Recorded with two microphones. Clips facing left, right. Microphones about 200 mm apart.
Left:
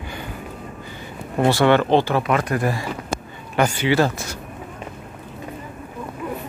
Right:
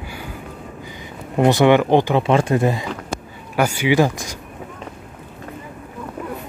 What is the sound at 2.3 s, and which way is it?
Speech, 25° right (ahead or behind).